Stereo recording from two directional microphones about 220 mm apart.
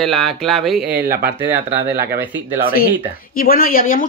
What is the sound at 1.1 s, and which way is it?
Speech, 45° right (ahead or behind).